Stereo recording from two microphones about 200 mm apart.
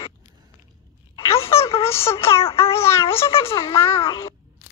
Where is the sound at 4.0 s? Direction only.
30° left (ahead or behind).